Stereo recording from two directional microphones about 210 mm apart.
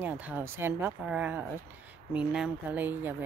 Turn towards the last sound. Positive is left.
turn(degrees=-10)  # may be behind; listen again after turning